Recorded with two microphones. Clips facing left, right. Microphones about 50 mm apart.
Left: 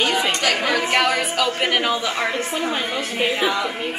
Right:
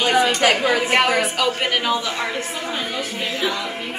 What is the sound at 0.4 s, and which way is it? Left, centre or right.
Speech, right.